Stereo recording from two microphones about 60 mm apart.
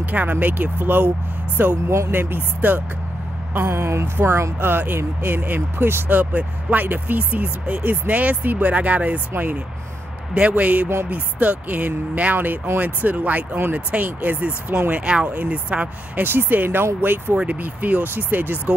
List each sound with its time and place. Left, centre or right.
0.0 s speech: right
1.9 s speech: right
2.1 s speech: right
3.5 s speech: right
4.6 s speech: right
16.2 s speech: right
17.4 s speech: right